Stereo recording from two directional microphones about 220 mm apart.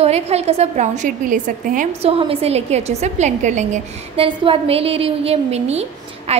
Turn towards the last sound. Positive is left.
turn(degrees=-30)  # may be behind; listen again after turning